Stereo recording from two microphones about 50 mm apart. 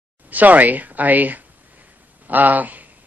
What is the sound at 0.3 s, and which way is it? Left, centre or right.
A man's voice, right.